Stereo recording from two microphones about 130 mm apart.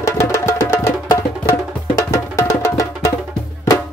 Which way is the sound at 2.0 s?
25° left (ahead or behind).